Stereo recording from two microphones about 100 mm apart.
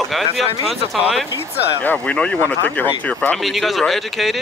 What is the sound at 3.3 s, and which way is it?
Speech, centre (ahead or behind).